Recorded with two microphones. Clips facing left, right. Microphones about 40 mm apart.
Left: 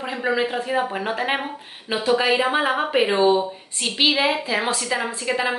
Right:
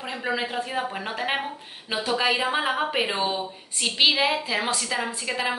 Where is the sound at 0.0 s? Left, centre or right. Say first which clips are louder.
Left 5 dB; centre.